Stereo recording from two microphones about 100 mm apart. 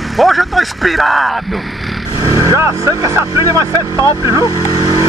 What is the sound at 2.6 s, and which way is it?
Speech, 30° right (ahead or behind).